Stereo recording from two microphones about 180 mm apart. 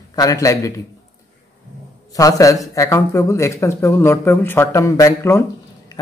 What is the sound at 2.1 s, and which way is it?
A man's voice, 20° left (ahead or behind).